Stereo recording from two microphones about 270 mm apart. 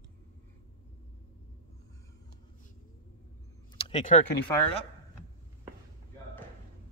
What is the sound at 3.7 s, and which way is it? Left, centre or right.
Speech, left.